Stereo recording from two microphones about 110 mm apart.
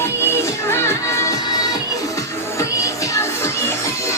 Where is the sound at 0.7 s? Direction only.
25° left (ahead or behind).